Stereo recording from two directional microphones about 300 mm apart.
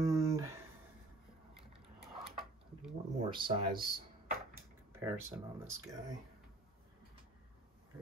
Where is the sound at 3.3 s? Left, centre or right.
Centre.